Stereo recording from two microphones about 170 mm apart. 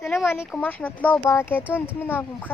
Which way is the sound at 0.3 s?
10° left (ahead or behind).